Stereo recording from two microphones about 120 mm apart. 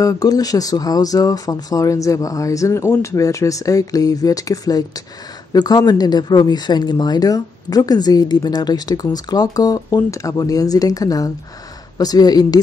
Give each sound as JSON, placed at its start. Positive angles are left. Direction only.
{"t": 0.0, "sound": "speech", "side_deg": 30}